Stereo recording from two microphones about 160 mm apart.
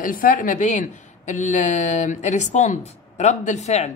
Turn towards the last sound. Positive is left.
turn(degrees=45)  # may be behind; listen again after turning